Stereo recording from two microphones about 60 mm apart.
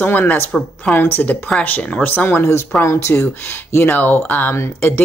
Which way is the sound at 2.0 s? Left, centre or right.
Left.